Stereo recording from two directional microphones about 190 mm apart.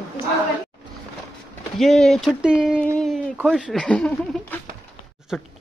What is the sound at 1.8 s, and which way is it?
Speech, centre (ahead or behind).